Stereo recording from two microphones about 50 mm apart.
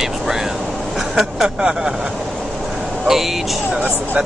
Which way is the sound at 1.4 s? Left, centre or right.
Centre.